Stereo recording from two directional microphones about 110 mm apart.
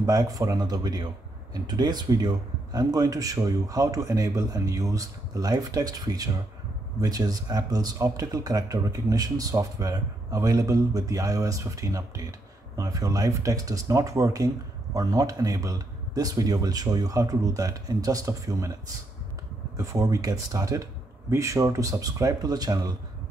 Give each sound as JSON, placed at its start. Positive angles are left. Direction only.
{"t": 0.0, "sound": "speech", "side_deg": -35}
{"t": 19.8, "sound": "speech", "side_deg": -30}